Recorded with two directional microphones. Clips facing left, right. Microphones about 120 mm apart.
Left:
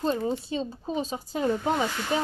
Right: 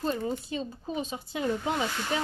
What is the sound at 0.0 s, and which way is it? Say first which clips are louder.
Speech: left 3 dB; 30° left (ahead or behind).